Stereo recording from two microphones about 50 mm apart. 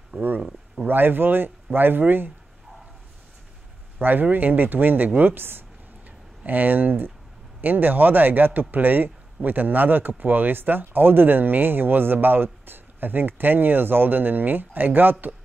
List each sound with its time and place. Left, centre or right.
0.4 s speech: centre
0.8 s speech: right
4.0 s speech: right
6.0 s a sound: right
7.6 s speech: right